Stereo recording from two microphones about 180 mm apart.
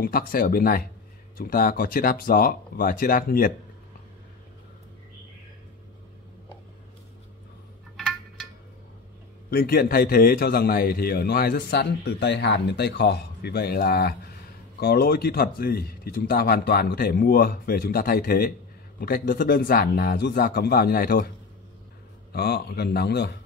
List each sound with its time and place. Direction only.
0.0 s speech: 55° left (ahead or behind)
8.0 s a sound: centre (ahead or behind)
9.5 s a man's voice: 55° left (ahead or behind)
22.3 s a man's voice: 60° left (ahead or behind)